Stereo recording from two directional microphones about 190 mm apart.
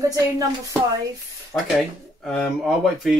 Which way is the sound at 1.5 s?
5° left (ahead or behind).